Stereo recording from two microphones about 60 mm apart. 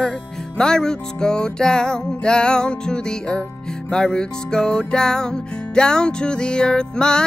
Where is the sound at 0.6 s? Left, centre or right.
Centre.